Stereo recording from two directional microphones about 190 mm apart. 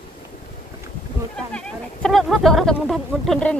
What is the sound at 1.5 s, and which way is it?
Speech, 5° left (ahead or behind).